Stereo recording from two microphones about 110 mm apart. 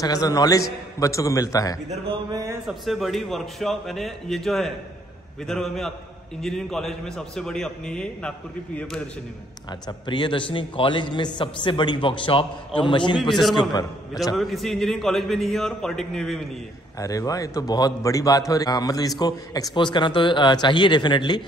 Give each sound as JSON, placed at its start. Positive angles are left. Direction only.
{"t": 0.0, "sound": "a man's voice", "side_deg": 35}
{"t": 2.7, "sound": "a man's voice", "side_deg": 0}
{"t": 9.7, "sound": "a man's voice", "side_deg": 45}
{"t": 13.2, "sound": "a man's voice", "side_deg": 0}
{"t": 17.0, "sound": "a man's voice", "side_deg": 30}